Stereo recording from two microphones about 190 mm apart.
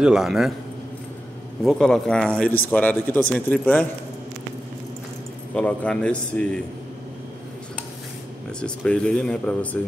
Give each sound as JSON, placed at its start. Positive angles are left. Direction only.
{"t": 0.0, "sound": "a man's voice", "side_deg": -5}
{"t": 1.6, "sound": "a man's voice", "side_deg": 0}
{"t": 5.5, "sound": "a man's voice", "side_deg": 5}
{"t": 8.5, "sound": "a man's voice", "side_deg": 5}